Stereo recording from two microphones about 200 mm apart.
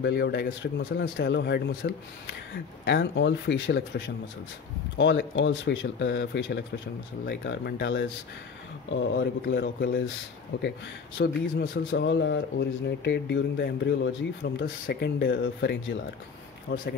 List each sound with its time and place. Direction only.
0.0 s speech: 55° left (ahead or behind)
11.1 s speech: 60° left (ahead or behind)